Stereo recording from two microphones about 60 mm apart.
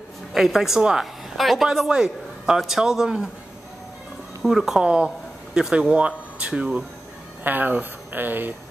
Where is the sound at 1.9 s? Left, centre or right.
Centre.